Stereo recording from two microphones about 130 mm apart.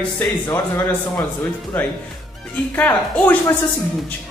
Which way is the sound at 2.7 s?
15° left (ahead or behind).